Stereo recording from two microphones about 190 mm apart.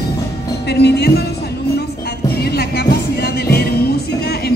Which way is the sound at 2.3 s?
55° left (ahead or behind).